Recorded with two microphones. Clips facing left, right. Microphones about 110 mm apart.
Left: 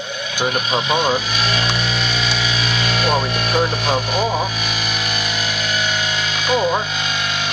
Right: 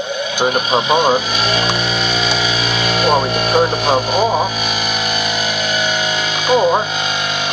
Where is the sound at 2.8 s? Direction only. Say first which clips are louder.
Right 5 dB; 10° right (ahead or behind).